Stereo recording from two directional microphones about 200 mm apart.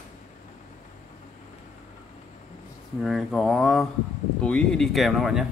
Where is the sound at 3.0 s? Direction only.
Centre (ahead or behind).